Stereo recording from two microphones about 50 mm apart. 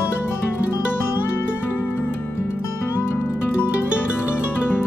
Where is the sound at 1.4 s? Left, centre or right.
Left.